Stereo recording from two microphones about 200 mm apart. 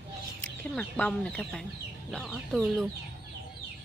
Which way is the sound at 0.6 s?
5° left (ahead or behind).